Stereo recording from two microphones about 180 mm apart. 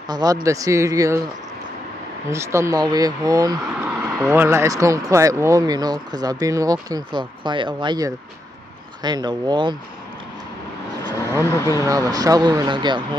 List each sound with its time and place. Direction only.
0.1 s speech: 20° right (ahead or behind)
2.2 s speech: 15° right (ahead or behind)
3.8 s speech: 10° right (ahead or behind); by 9.8 s 25° right (ahead or behind)
11.1 s vehicle: 15° right (ahead or behind)
11.4 s speech: 15° left (ahead or behind)
11.8 s speech: 20° right (ahead or behind)